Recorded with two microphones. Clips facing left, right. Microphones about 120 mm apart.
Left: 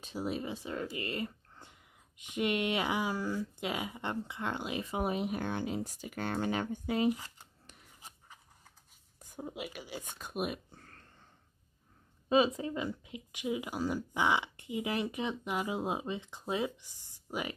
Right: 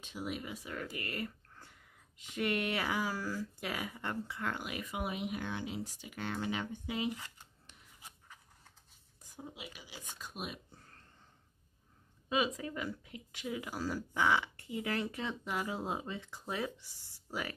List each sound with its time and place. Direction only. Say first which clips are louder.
0.0 s speech: left 5 dB; 35° left (ahead or behind)
9.2 s speech: left 7 dB; 55° left (ahead or behind)
12.3 s speech: left 6 dB; 30° left (ahead or behind)